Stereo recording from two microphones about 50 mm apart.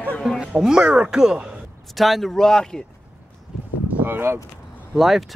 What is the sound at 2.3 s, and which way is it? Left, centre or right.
Speech, centre.